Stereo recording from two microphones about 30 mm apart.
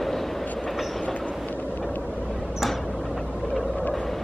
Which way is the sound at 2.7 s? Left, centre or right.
Centre.